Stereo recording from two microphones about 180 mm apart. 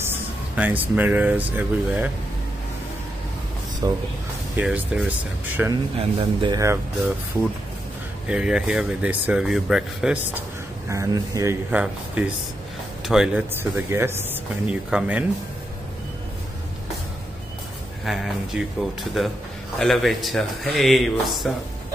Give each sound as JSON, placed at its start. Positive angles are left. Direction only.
{"t": 0.1, "sound": "speech", "side_deg": -10}
{"t": 3.8, "sound": "speech", "side_deg": -25}
{"t": 4.6, "sound": "speech", "side_deg": -5}
{"t": 5.9, "sound": "speech", "side_deg": -30}
{"t": 8.3, "sound": "speech", "side_deg": -5}
{"t": 10.9, "sound": "speech", "side_deg": -15}
{"t": 13.0, "sound": "speech", "side_deg": -5}
{"t": 18.0, "sound": "speech", "side_deg": 0}